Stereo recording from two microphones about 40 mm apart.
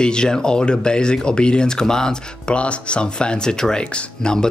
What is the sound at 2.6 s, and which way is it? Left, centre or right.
Speech, left.